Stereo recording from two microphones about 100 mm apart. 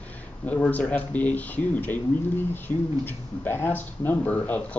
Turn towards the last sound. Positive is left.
turn(degrees=15)  # may be behind; listen again after turning